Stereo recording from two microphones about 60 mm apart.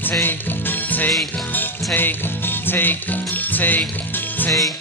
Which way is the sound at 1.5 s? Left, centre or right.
Left.